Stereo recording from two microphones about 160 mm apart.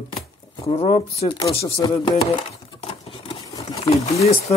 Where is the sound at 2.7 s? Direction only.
35° left (ahead or behind).